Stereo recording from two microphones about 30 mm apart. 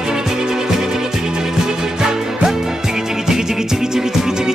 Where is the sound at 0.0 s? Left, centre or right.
Centre.